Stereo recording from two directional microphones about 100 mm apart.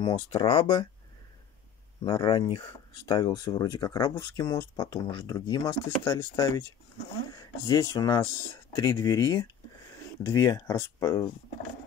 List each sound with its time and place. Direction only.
0.0 s speech: 50° left (ahead or behind)
2.0 s speech: 50° left (ahead or behind)
4.4 s speech: 35° left (ahead or behind)